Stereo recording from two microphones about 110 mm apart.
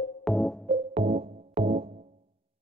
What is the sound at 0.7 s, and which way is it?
Music, 60° right (ahead or behind).